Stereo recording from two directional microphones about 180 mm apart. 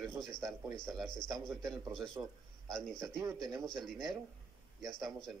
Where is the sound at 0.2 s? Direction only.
5° left (ahead or behind).